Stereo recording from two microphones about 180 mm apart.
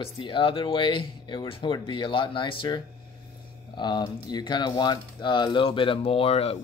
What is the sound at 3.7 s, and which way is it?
Speech, 25° left (ahead or behind).